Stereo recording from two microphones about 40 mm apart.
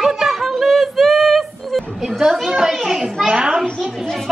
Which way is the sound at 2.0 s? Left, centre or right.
Centre.